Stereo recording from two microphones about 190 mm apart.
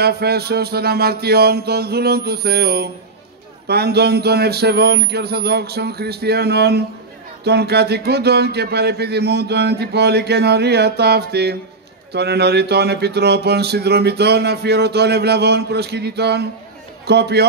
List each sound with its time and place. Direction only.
0.0 s speech: 55° right (ahead or behind)